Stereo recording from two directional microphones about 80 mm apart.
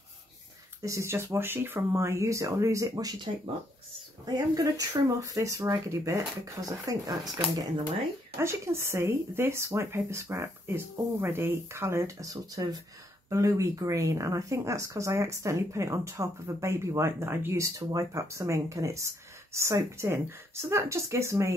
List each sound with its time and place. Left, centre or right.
0.8 s speech: right
4.3 s speech: right
7.1 s speech: right
8.4 s speech: right